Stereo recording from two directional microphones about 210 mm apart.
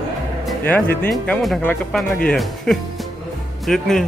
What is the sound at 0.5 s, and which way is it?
Speech, 5° left (ahead or behind).